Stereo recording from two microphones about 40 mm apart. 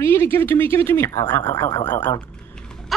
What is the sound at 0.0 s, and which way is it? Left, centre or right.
Speech, left.